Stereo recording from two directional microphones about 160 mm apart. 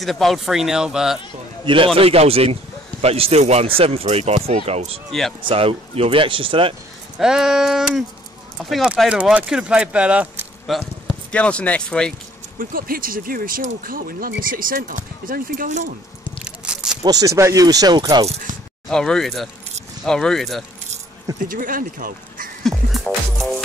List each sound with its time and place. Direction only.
0.0 s speech: centre (ahead or behind)
2.0 s speech: 40° right (ahead or behind)
7.2 s speech: 5° right (ahead or behind)
11.3 s speech: 10° left (ahead or behind)
12.5 s speech: 65° right (ahead or behind)
16.4 s a sound: 5° right (ahead or behind)
17.0 s speech: 20° right (ahead or behind)
18.9 s speech: 5° left (ahead or behind)
21.4 s speech: 60° right (ahead or behind)
22.6 s music: centre (ahead or behind)